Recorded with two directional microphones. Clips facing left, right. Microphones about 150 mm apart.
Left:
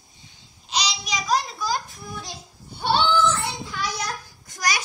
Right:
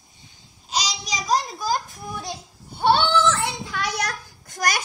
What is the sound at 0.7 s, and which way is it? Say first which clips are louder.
Babbling: even; 45° right (ahead or behind).